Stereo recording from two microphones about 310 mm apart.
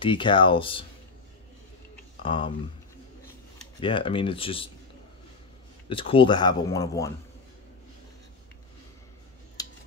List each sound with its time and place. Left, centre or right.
0.0 s speech: centre
2.2 s speech: centre
3.8 s speech: centre
5.9 s speech: centre
9.6 s a sound: centre